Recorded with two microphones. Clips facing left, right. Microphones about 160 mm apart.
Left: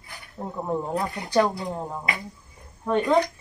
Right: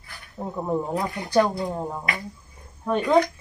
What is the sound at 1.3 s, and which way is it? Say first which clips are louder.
Speech: right 1 dB; 5° right (ahead or behind).